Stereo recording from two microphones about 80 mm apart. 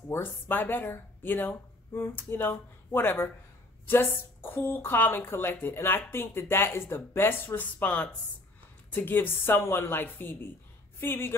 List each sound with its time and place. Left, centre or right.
0.1 s speech: left